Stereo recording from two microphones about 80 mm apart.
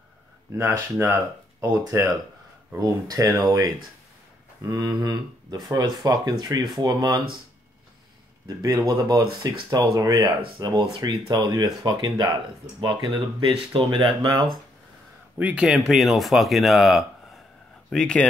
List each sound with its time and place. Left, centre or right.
0.6 s speech: right
1.6 s speech: right
8.7 s speech: right
9.0 s speech: right
12.8 s speech: right
13.9 s speech: right
15.3 s speech: centre
17.8 s speech: centre